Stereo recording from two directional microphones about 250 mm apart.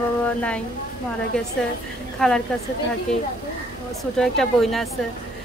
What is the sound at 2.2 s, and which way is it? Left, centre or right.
Speech, centre.